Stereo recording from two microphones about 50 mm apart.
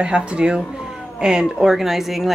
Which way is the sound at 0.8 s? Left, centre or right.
Centre.